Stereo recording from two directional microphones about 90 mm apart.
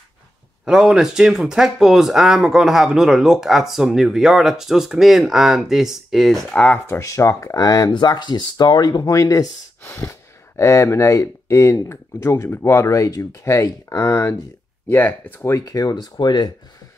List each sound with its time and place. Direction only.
0.7 s speech: 5° right (ahead or behind)
6.9 s speech: 35° left (ahead or behind)
7.9 s speech: 55° left (ahead or behind); by 14.3 s 35° left (ahead or behind)
14.9 s speech: 20° left (ahead or behind)
15.5 s speech: 40° left (ahead or behind)